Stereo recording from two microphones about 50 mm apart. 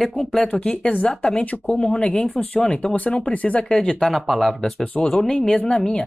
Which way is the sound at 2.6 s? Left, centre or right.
Centre.